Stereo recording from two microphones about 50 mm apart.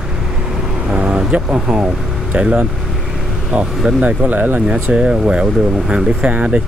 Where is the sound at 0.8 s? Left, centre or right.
Right.